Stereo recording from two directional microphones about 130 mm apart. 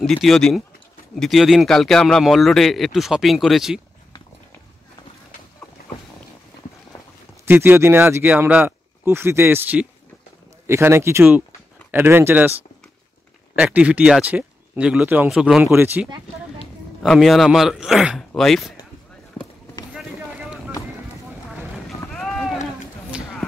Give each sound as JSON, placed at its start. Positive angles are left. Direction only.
{"t": 0.0, "sound": "a man's voice", "side_deg": 5}
{"t": 7.4, "sound": "speech", "side_deg": -15}
{"t": 13.6, "sound": "speech", "side_deg": -10}
{"t": 15.6, "sound": "speech", "side_deg": -15}
{"t": 17.0, "sound": "a man's voice", "side_deg": 0}
{"t": 19.9, "sound": "a sound", "side_deg": -10}
{"t": 21.3, "sound": "boat", "side_deg": 0}